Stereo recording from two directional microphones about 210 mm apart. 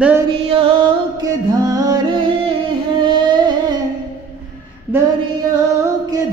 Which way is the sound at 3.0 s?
20° right (ahead or behind).